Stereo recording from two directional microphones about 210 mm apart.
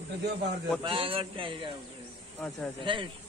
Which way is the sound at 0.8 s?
25° right (ahead or behind).